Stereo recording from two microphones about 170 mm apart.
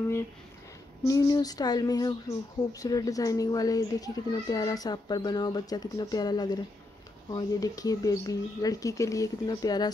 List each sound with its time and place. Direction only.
1.0 s a child's voice: 20° left (ahead or behind)